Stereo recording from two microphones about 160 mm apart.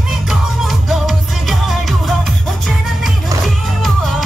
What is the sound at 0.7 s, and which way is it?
Music, centre (ahead or behind).